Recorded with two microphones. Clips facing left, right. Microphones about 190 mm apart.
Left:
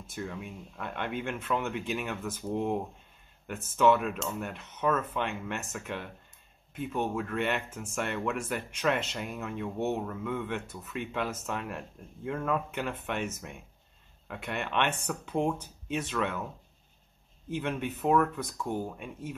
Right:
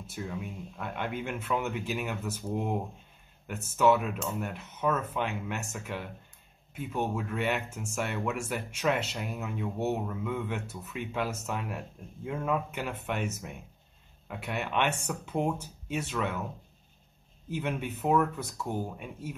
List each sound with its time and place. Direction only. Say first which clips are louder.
0.1 s speech: even; 5° right (ahead or behind)
17.5 s speech: left 1 dB; 5° right (ahead or behind)